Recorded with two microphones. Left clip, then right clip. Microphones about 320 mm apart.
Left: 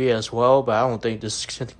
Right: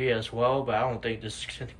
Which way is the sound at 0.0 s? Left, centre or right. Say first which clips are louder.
Left 6 dB; centre.